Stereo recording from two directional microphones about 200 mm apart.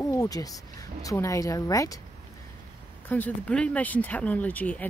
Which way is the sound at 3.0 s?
10° left (ahead or behind).